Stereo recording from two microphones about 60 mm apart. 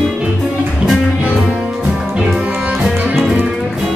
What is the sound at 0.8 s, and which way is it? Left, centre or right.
Music, right.